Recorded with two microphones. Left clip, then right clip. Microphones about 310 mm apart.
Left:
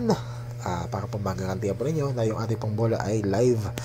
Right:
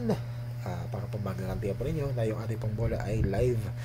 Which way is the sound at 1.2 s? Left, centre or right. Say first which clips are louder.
Left 5 dB; centre.